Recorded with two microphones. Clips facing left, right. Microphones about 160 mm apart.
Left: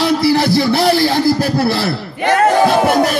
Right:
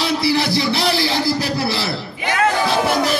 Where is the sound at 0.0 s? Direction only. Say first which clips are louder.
Left 5 dB; 45° left (ahead or behind).